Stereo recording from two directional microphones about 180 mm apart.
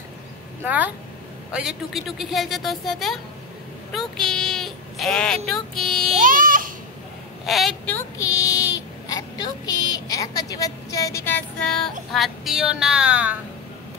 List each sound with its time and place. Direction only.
0.7 s speech: 10° right (ahead or behind)
1.5 s female singing: 5° right (ahead or behind)
4.2 s a sound: centre (ahead or behind)
6.1 s baby cry: 50° right (ahead or behind)
7.4 s a woman's voice: centre (ahead or behind)
7.9 s a sound: 20° left (ahead or behind)
11.2 s female singing: 10° left (ahead or behind)